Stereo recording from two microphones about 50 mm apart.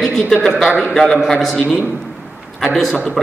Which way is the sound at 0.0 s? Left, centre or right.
Centre.